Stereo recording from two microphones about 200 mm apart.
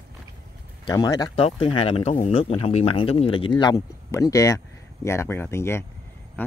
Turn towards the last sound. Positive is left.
turn(degrees=15)  # may be behind; listen again after turning